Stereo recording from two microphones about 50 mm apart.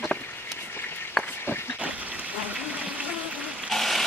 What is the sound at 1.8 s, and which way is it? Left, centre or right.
Pig, right.